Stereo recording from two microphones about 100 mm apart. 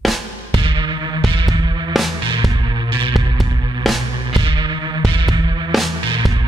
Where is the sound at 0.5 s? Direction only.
55° right (ahead or behind).